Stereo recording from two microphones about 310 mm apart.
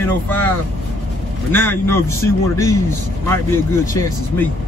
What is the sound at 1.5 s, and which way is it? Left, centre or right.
A man's voice, centre.